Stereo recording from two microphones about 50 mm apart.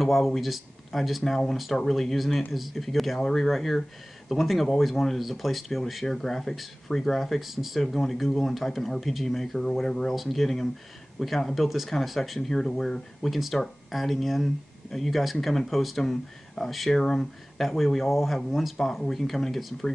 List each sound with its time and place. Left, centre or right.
0.0 s speech: centre
17.6 s speech: centre